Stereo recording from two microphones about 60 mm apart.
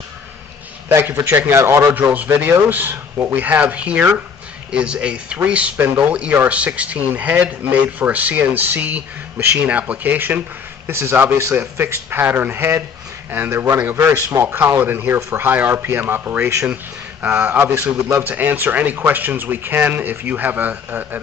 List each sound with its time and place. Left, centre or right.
0.8 s a man's voice: right
1.1 s a man's voice: right
2.0 s speech: right
3.4 s speech: right
10.9 s a man's voice: right
14.2 s speech: right
14.8 s speech: right
15.1 s a man's voice: right
15.4 s speech: right
17.2 s speech: right
18.3 s speech: right